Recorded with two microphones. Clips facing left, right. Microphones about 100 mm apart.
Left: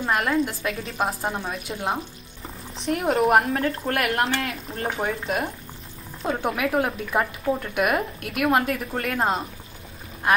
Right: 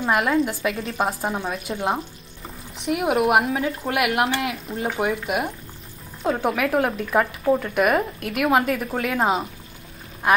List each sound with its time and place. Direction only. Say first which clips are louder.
0.0 s speech: right 2 dB; centre (ahead or behind)